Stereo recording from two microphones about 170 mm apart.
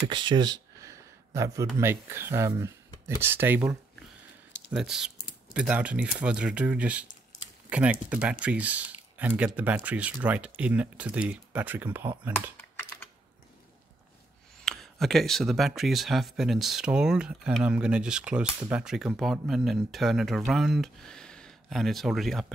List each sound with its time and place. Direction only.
0.1 s a sound: 25° right (ahead or behind)
1.8 s speech: 15° right (ahead or behind)
14.6 s speech: centre (ahead or behind)